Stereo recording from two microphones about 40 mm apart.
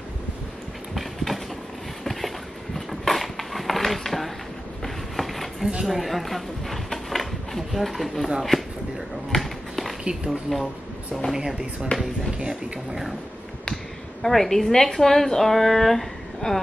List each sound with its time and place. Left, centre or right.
0.9 s a sound: centre
8.4 s speech: centre
9.3 s a sound: centre
10.5 s a woman's voice: centre
11.3 s speech: centre
14.2 s a woman's voice: centre